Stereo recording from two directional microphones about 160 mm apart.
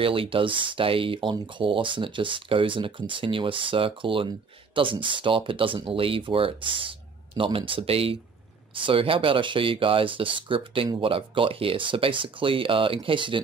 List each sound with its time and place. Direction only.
0.0 s speech: 35° right (ahead or behind)